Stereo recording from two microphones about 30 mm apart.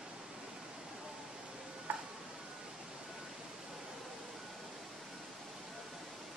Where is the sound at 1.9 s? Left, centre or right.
Right.